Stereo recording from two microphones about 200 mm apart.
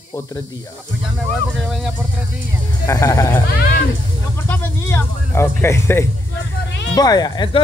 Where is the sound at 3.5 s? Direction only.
50° left (ahead or behind).